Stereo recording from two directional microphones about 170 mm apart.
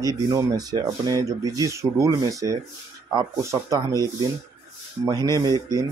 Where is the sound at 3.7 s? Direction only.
20° right (ahead or behind).